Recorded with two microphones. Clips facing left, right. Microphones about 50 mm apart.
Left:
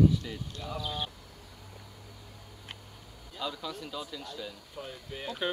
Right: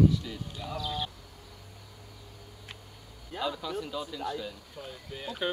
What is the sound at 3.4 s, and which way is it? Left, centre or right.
Speech, centre.